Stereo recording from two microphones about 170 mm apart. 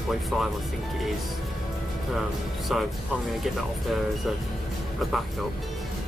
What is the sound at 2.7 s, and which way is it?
Speech, centre (ahead or behind).